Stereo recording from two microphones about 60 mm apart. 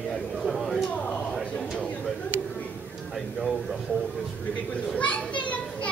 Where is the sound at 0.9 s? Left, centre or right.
Centre.